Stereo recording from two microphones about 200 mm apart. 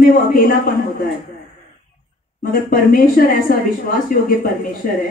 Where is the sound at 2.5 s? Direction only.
45° left (ahead or behind).